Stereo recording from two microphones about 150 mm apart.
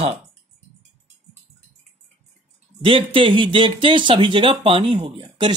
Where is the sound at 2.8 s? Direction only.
35° right (ahead or behind).